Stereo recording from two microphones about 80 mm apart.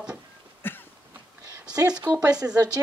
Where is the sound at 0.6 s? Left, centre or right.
Left.